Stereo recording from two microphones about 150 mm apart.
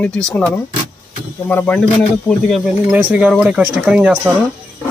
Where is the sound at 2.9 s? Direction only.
10° right (ahead or behind).